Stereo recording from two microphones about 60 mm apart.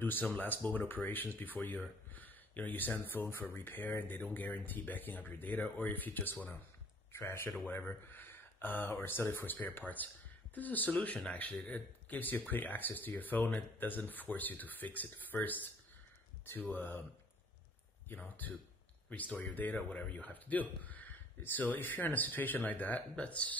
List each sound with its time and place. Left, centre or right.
0.0 s speech: left
7.1 s speech: left
7.6 s speech: left
16.7 s speech: left
18.0 s speech: left